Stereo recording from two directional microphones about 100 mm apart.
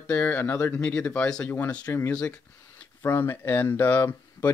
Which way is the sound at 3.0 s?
25° left (ahead or behind).